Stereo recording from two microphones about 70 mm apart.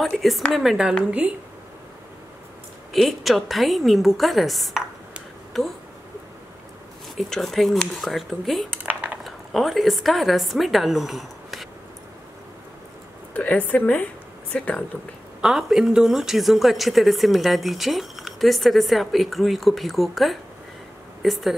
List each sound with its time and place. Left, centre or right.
0.2 s speech: centre
2.9 s speech: centre
7.2 s speech: centre
8.8 s dishes: right
9.2 s speech: centre
13.3 s speech: left
15.4 s speech: centre